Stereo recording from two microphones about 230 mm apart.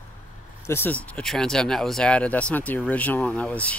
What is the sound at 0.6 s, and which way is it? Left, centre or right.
Speech, centre.